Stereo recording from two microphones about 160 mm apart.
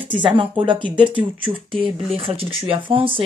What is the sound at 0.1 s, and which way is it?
Speech, 30° right (ahead or behind).